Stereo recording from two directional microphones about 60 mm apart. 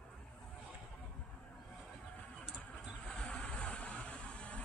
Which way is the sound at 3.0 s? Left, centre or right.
Centre.